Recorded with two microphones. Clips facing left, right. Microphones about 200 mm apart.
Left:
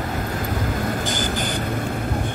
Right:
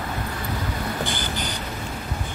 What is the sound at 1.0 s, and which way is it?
Vehicle, 45° left (ahead or behind).